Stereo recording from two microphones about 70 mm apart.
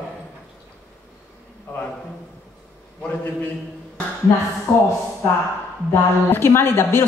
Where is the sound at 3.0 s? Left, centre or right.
Left.